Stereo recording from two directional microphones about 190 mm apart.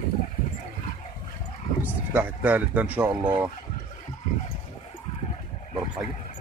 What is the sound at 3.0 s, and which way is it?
Speech, 20° right (ahead or behind).